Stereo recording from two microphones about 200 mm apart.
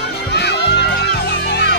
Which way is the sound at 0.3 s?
55° left (ahead or behind).